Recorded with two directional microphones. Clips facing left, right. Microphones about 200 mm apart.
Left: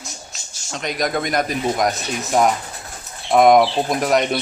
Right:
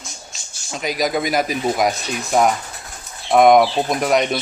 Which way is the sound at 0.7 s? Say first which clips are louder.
Right 2 dB; 5° right (ahead or behind).